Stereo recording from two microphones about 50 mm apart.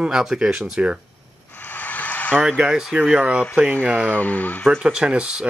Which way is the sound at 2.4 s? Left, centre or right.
Right.